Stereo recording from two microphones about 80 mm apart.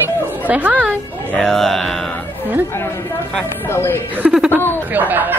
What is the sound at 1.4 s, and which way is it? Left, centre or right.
Speech, centre.